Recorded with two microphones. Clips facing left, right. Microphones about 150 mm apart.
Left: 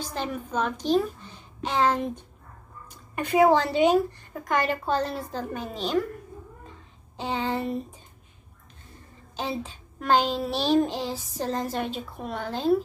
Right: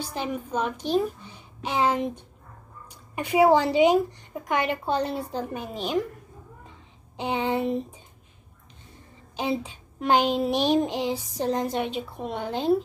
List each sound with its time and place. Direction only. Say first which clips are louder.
0.1 s child singing: even; 15° right (ahead or behind)
0.8 s a woman's voice: left 3 dB; 10° right (ahead or behind)
3.2 s child singing: right 1 dB; 10° right (ahead or behind)
7.2 s child singing: right 2 dB; 15° right (ahead or behind)
9.4 s child singing: right 3 dB; 10° right (ahead or behind)